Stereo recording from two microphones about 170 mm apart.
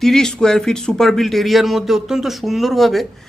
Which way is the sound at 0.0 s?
5° left (ahead or behind).